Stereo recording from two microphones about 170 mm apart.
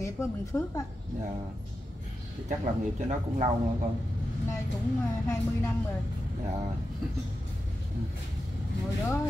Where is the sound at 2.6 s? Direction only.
40° right (ahead or behind).